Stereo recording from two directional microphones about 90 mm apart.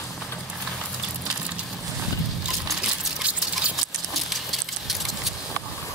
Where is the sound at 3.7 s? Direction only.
Centre (ahead or behind).